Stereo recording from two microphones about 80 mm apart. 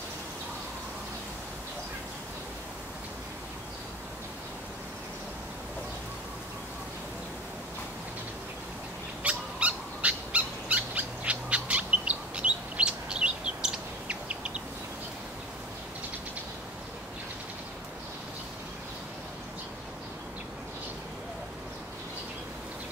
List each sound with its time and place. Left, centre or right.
9.2 s owl: centre